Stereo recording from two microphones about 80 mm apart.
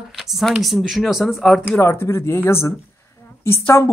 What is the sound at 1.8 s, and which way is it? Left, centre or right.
Speech, left.